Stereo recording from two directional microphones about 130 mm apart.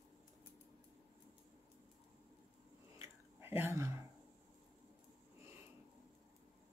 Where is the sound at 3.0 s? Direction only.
15° right (ahead or behind).